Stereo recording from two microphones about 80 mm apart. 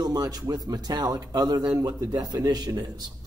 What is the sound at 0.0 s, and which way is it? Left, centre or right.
Speech, right.